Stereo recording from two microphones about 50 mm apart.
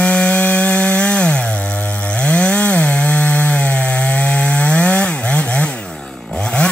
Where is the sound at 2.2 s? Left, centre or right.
Left.